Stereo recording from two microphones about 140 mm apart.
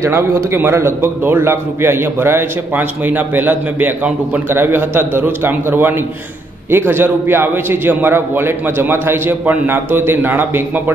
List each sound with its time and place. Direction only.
0.0 s a man's voice: 20° right (ahead or behind)